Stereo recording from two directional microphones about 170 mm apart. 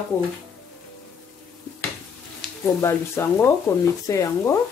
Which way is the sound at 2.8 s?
15° left (ahead or behind).